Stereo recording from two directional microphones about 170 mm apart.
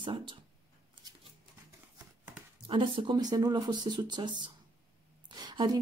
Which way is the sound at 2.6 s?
30° right (ahead or behind).